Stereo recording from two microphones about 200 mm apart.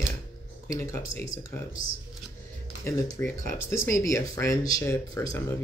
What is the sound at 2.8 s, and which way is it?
Speech, 15° left (ahead or behind).